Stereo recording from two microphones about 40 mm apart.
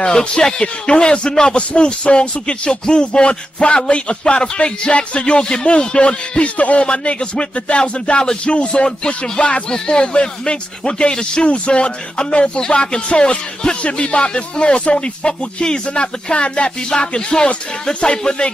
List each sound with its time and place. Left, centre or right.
0.0 s speech: left
6.9 s speech: left